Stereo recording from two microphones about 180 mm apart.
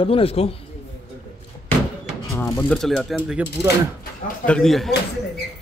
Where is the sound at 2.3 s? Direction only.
15° left (ahead or behind).